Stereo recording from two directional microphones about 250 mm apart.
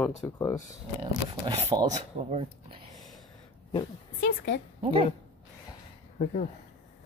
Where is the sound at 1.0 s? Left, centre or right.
Right.